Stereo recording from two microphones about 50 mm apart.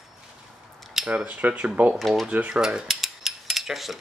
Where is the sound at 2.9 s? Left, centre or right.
Centre.